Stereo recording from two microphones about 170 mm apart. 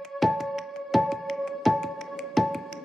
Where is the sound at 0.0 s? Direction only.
Centre (ahead or behind).